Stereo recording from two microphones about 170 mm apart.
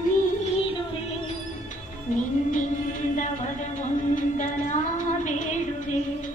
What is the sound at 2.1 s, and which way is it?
Music, 50° left (ahead or behind).